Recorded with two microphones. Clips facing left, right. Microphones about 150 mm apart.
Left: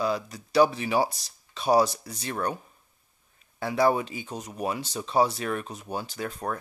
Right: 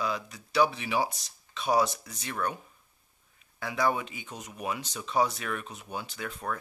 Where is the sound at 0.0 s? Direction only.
35° left (ahead or behind).